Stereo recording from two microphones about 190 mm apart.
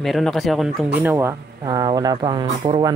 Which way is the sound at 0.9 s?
10° right (ahead or behind).